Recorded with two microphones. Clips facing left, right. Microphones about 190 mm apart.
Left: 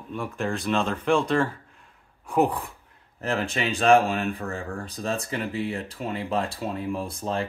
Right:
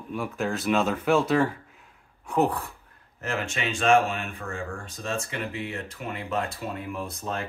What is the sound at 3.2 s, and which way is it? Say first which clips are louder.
Speech: left 3 dB; 35° left (ahead or behind).